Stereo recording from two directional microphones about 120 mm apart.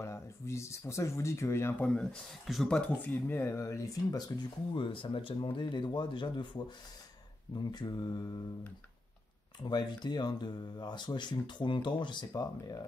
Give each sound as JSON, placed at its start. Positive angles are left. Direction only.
{"t": 0.0, "sound": "speech", "side_deg": 25}
{"t": 2.4, "sound": "speech", "side_deg": 0}
{"t": 3.0, "sound": "speech", "side_deg": 15}
{"t": 9.6, "sound": "speech", "side_deg": 35}